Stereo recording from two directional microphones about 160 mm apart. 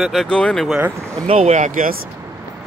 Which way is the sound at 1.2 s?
40° right (ahead or behind).